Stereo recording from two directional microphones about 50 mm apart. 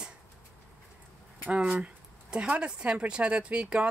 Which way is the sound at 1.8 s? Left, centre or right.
Right.